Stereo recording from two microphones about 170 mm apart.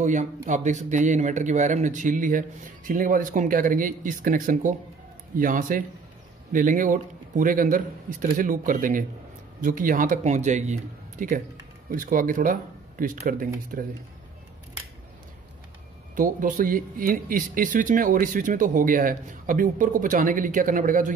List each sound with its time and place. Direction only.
0.0 s speech: 45° right (ahead or behind)
16.2 s speech: 50° right (ahead or behind)